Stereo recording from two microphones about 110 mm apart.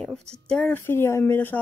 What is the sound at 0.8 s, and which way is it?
Speech, 20° left (ahead or behind).